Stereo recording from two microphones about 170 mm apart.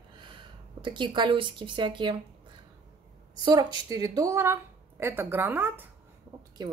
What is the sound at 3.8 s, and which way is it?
A woman's voice, 20° right (ahead or behind).